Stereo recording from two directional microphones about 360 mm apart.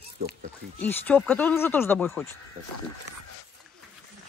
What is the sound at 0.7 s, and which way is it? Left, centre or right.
Speech, centre.